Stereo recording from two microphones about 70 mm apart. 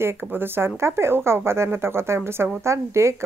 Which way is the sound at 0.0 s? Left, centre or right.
Right.